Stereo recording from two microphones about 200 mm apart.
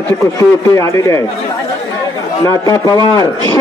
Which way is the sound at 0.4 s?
15° left (ahead or behind).